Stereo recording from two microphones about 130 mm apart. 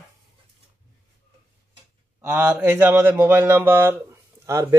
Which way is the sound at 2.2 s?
15° right (ahead or behind).